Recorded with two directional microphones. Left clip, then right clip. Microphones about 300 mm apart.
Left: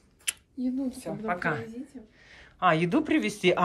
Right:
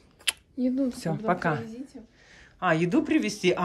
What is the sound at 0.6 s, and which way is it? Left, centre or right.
Speech, centre.